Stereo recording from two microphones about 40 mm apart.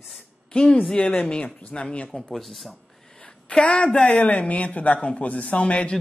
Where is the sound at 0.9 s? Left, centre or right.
Left.